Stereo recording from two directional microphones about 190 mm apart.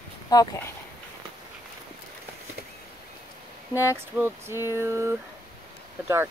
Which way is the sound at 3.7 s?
10° right (ahead or behind).